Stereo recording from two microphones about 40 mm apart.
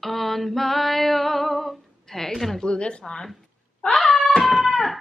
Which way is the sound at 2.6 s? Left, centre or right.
Left.